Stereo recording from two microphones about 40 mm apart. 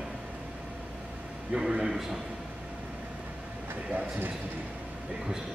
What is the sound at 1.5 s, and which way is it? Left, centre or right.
Speech, centre.